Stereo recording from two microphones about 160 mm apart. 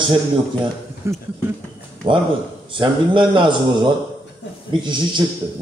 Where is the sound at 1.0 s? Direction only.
15° right (ahead or behind).